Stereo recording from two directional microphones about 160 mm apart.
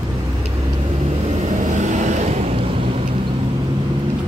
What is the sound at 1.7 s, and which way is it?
Vehicle, 50° right (ahead or behind).